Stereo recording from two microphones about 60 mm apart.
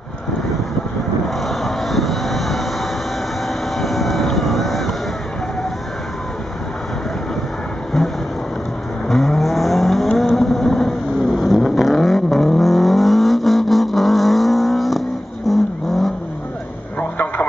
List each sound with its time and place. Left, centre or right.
1.4 s vehicle: centre
9.1 s vehicle: centre